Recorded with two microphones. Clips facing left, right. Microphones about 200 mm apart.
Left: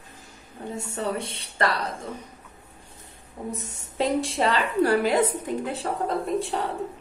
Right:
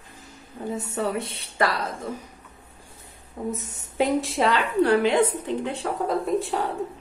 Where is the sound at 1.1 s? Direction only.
Centre (ahead or behind).